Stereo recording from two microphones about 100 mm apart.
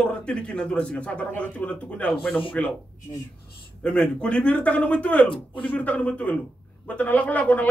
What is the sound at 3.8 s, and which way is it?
Speech, 10° left (ahead or behind).